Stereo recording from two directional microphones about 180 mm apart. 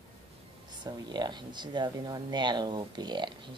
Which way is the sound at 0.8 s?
25° right (ahead or behind).